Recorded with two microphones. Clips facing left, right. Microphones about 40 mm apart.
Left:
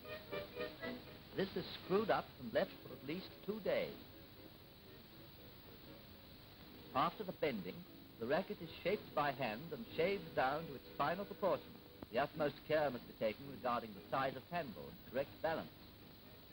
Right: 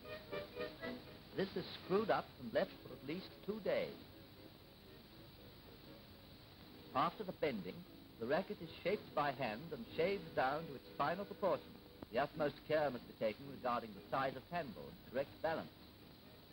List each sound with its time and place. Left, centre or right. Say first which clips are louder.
0.0 s music: even; left
6.9 s speech: even; left